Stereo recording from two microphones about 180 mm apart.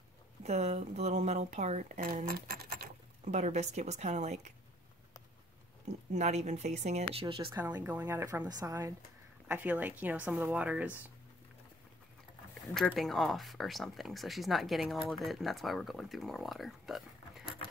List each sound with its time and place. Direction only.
0.4 s speech: 40° right (ahead or behind); by 2.9 s 55° right (ahead or behind)
3.3 s speech: 40° right (ahead or behind)
6.1 s speech: 40° right (ahead or behind)
7.8 s a woman's voice: 10° right (ahead or behind)
9.5 s a woman's voice: 10° right (ahead or behind)
12.7 s speech: 5° left (ahead or behind)